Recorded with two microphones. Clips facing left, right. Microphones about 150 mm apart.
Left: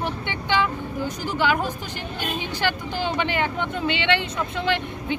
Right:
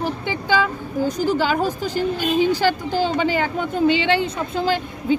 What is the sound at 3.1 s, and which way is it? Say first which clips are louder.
Speech: right 4 dB; 35° right (ahead or behind).